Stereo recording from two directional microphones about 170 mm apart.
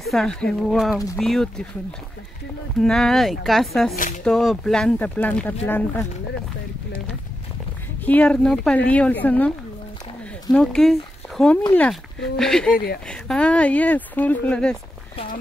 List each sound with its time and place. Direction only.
0.0 s speech: centre (ahead or behind)
2.8 s speech: centre (ahead or behind)
8.0 s speech: 10° left (ahead or behind)
10.5 s speech: 5° left (ahead or behind)
12.7 s speech: 65° left (ahead or behind)
13.1 s speech: 5° left (ahead or behind)